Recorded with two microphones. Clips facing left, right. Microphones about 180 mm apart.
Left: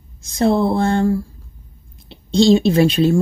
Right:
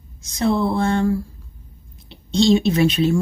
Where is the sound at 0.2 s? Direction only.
30° left (ahead or behind).